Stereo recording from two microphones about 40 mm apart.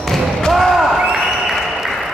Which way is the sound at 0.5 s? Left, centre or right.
Centre.